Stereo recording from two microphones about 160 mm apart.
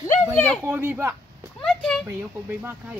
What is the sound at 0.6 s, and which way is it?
Speech, 10° right (ahead or behind).